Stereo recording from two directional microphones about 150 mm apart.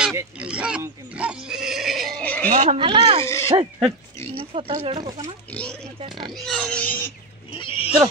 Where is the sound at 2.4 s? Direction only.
70° right (ahead or behind).